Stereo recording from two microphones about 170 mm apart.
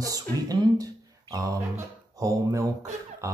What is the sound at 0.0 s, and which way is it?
Speech, 20° right (ahead or behind).